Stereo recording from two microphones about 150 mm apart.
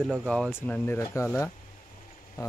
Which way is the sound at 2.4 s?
20° left (ahead or behind).